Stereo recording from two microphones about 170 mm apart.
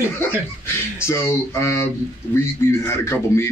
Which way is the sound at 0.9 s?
15° left (ahead or behind).